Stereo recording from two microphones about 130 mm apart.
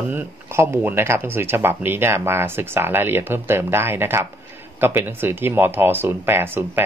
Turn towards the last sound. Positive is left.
turn(degrees=-15)  # may be behind; listen again after turning